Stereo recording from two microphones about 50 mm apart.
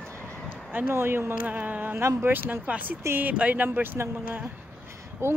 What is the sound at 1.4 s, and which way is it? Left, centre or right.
Speech, right.